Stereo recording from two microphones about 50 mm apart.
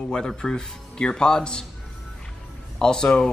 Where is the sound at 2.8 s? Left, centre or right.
Centre.